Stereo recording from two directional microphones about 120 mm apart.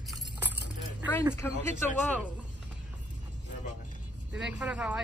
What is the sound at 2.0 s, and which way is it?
Speech, 10° left (ahead or behind).